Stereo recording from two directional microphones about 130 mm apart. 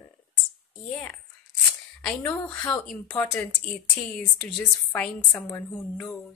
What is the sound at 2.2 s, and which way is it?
A woman's voice, 15° left (ahead or behind).